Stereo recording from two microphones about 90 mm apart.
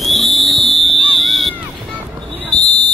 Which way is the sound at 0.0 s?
Centre (ahead or behind).